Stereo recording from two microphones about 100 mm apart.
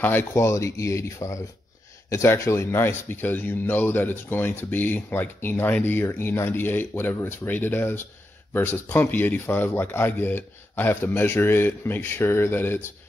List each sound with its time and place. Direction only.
0.0 s a man's voice: 20° left (ahead or behind)